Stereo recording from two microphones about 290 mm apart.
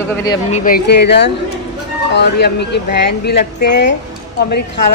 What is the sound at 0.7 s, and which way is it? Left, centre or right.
Speech, left.